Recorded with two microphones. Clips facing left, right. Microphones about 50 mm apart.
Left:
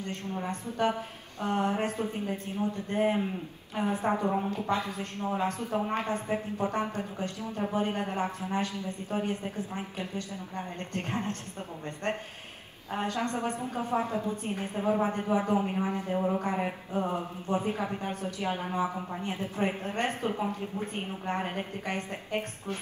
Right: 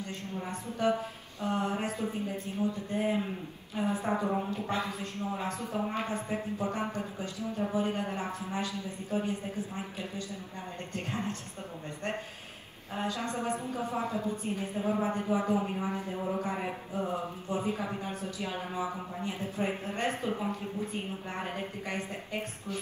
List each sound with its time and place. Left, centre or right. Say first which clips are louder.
0.0 s a woman's voice: left 3 dB; left
12.9 s a woman's voice: left 3 dB; left